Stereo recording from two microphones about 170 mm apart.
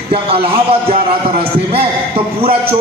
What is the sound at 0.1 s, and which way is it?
A man's voice, 35° right (ahead or behind).